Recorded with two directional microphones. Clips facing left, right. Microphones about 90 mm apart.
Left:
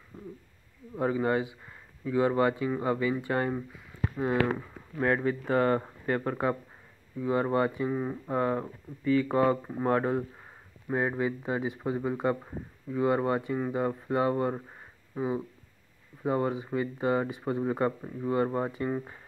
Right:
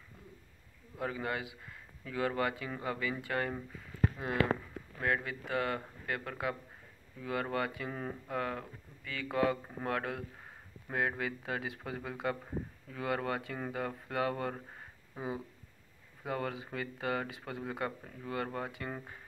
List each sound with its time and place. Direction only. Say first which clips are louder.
0.1 s a sound: left 13 dB; 30° left (ahead or behind)
0.9 s speech: left 10 dB; 30° left (ahead or behind)
5.0 s speech: left 8 dB; 40° left (ahead or behind)
7.9 s speech: left 9 dB; 10° left (ahead or behind)
8.3 s speech: left 9 dB; 30° left (ahead or behind)
16.2 s speech: left 9 dB; 25° left (ahead or behind)